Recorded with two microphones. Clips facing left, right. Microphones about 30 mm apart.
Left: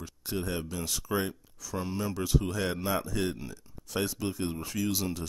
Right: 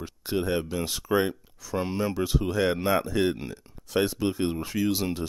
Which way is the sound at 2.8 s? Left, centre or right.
Right.